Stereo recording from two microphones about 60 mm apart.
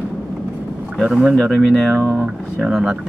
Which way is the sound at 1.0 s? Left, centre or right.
Centre.